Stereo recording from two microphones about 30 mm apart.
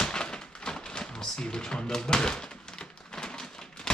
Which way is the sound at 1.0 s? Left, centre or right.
Left.